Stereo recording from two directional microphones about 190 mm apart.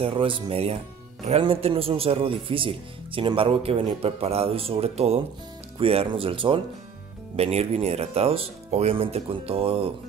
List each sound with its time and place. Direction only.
0.0 s speech: 25° right (ahead or behind)